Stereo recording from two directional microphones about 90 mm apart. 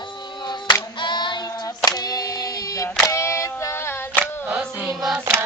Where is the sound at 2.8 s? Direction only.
35° left (ahead or behind).